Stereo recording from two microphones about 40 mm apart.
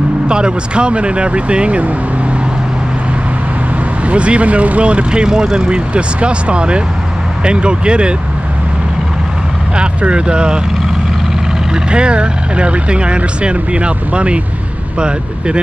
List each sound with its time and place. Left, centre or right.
0.3 s speech: right
4.1 s speech: right
9.8 s speech: right
11.7 s speech: right